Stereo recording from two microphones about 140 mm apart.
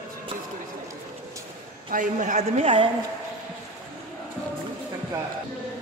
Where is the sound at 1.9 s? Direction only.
65° right (ahead or behind).